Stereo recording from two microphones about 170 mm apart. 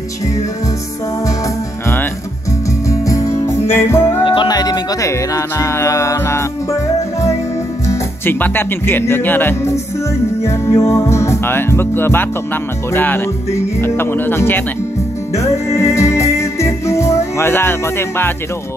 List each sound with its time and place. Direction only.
2.9 s music: 20° left (ahead or behind)
4.2 s music: 30° left (ahead or behind)
7.8 s speech: 15° left (ahead or behind)
10.4 s music: 15° left (ahead or behind)
12.9 s speech: 10° left (ahead or behind)
15.3 s music: 15° left (ahead or behind)